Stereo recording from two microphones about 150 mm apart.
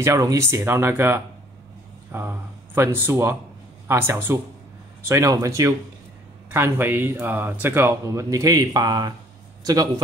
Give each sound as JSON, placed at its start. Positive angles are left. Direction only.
{"t": 0.0, "sound": "speech", "side_deg": -20}